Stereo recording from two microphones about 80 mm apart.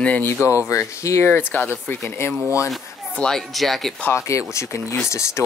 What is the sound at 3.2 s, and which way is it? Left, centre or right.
Speech, centre.